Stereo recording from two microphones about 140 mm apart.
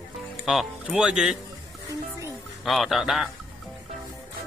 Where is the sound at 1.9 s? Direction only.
25° right (ahead or behind).